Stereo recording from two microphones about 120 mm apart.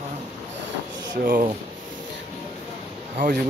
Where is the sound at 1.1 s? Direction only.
90° right.